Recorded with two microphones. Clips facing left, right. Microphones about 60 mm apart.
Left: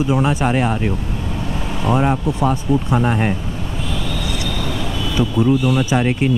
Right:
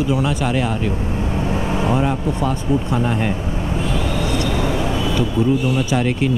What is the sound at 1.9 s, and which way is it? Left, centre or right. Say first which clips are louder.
Speech: left 2 dB; left.